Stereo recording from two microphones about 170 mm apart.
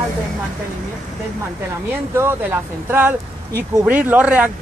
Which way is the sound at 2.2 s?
10° right (ahead or behind).